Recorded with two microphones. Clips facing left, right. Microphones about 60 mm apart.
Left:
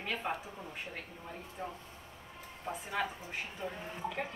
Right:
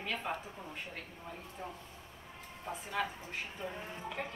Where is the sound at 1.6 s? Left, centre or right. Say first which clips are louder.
Left 3 dB; centre.